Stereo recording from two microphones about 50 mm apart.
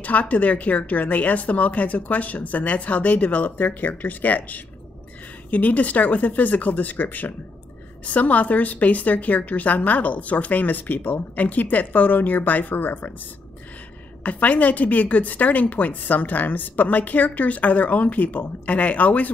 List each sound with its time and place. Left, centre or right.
0.0 s a woman's voice: left
14.2 s a woman's voice: left